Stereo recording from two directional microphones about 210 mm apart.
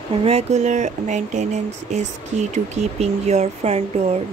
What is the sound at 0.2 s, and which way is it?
Speech, 30° right (ahead or behind).